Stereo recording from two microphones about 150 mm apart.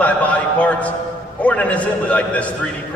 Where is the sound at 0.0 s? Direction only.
10° left (ahead or behind).